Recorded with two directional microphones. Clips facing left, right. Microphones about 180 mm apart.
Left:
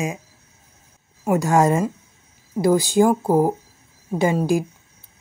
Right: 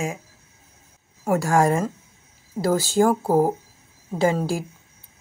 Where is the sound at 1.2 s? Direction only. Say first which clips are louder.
Left 2 dB; 20° left (ahead or behind).